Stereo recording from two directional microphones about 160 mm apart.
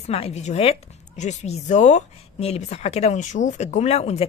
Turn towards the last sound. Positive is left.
turn(degrees=40)  # may be behind; listen again after turning